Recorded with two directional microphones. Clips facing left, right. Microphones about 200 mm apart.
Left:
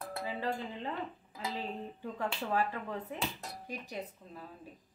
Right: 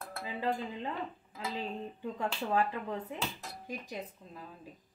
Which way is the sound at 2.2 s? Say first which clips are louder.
Right 2 dB; 15° right (ahead or behind).